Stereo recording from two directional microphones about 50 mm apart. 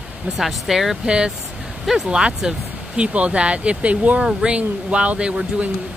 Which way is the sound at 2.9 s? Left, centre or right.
Right.